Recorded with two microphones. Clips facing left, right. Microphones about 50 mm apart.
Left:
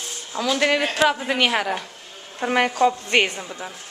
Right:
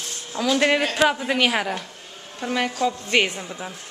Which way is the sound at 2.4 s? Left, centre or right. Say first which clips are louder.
Left 5 dB; left.